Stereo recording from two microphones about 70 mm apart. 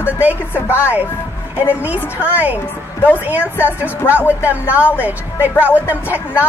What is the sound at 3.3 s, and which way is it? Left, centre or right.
Speech, right.